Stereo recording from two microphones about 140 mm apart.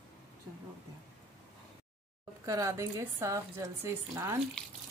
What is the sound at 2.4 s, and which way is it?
Speech, 25° right (ahead or behind).